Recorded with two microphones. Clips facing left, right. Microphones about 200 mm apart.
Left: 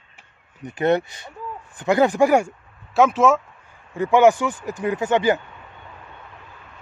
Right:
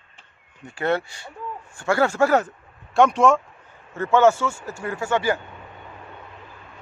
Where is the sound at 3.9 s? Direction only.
15° left (ahead or behind).